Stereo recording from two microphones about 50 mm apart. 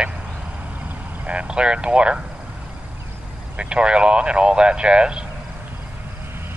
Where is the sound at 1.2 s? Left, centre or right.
Right.